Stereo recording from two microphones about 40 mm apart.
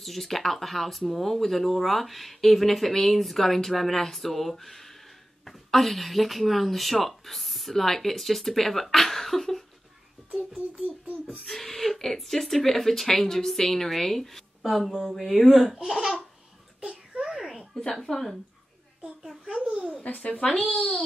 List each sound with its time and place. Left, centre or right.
0.0 s speech: centre
11.2 s speech: centre
15.7 s speech: centre
16.8 s a sound: right
17.2 s babbling: centre
17.6 s a sound: centre
18.0 s speech: centre
19.4 s speech: centre
20.1 s a child's voice: left